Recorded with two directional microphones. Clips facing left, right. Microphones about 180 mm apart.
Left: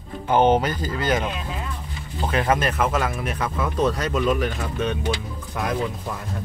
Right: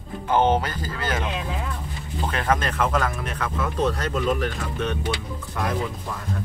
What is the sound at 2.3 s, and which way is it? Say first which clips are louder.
Speech: left 3 dB; 10° left (ahead or behind).